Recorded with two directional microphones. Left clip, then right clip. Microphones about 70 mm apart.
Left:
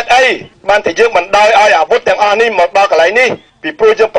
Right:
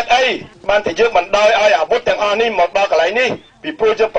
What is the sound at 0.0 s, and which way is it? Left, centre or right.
A man's voice, left.